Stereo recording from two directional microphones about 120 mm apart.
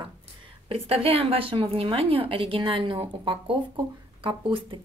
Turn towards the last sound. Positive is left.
turn(degrees=-45)  # may be behind; listen again after turning